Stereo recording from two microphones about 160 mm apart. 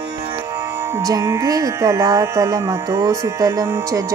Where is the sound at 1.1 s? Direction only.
20° right (ahead or behind).